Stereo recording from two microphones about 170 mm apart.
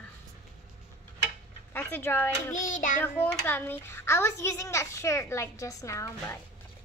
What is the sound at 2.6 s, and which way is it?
Child singing, 50° left (ahead or behind).